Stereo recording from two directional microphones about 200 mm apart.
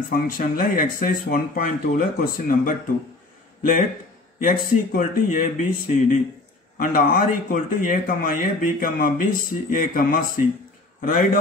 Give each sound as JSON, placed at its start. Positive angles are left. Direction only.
{"t": 0.1, "sound": "speech", "side_deg": 45}
{"t": 4.4, "sound": "a man's voice", "side_deg": 45}